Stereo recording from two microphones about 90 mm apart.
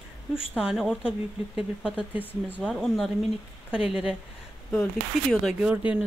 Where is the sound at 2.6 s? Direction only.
Centre (ahead or behind).